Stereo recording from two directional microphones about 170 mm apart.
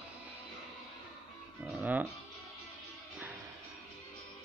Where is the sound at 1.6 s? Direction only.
10° right (ahead or behind).